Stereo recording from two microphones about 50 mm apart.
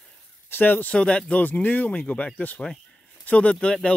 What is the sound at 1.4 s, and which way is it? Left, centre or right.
Speech, left.